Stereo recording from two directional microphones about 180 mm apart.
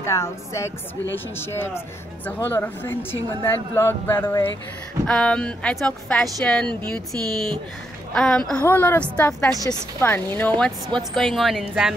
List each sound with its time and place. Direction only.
0.0 s a woman's voice: 15° left (ahead or behind)
11.0 s a woman's voice: centre (ahead or behind)